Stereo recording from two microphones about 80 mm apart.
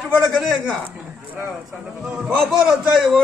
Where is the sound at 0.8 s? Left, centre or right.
Right.